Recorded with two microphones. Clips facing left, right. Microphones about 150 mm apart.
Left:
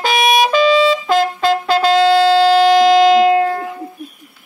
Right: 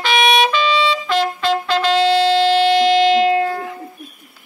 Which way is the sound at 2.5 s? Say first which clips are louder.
Left 4 dB; 40° left (ahead or behind).